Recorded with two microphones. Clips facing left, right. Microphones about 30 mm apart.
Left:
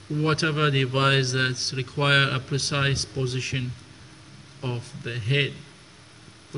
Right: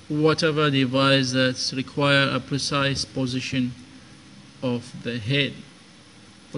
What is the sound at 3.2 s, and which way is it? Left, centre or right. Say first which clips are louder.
Speech: right 3 dB; right.